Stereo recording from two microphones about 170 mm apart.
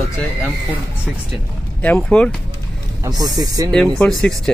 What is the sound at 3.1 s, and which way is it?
Speech, 20° right (ahead or behind).